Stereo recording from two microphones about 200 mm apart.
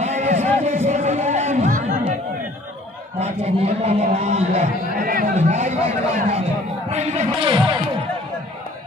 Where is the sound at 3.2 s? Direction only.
30° right (ahead or behind).